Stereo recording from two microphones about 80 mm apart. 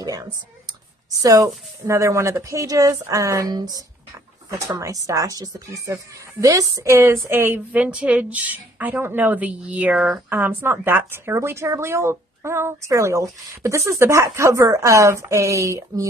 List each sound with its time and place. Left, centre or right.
0.0 s speech: right
5.0 s speech: right
6.7 s speech: right
7.7 s speech: centre; by 16.1 s right